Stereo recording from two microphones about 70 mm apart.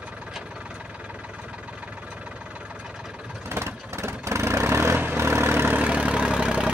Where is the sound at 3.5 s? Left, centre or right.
Right.